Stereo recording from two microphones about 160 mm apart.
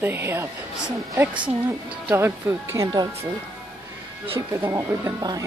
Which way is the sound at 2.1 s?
15° right (ahead or behind).